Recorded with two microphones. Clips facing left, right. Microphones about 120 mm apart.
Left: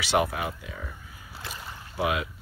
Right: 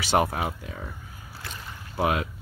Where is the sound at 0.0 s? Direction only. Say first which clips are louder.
Right 2 dB; 40° right (ahead or behind).